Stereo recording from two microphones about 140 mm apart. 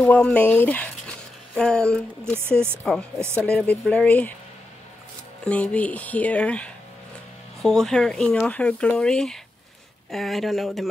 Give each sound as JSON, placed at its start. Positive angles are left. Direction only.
{"t": 0.0, "sound": "speech", "side_deg": 5}
{"t": 2.3, "sound": "speech", "side_deg": -15}
{"t": 2.8, "sound": "speech", "side_deg": 5}
{"t": 5.4, "sound": "speech", "side_deg": 10}